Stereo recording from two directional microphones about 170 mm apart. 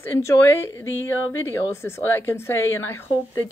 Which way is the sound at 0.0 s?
15° left (ahead or behind).